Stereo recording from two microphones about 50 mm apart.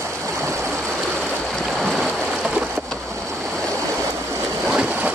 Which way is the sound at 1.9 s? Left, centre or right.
Centre.